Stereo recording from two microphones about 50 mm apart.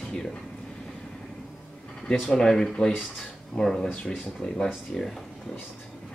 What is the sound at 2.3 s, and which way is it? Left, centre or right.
Speech, centre.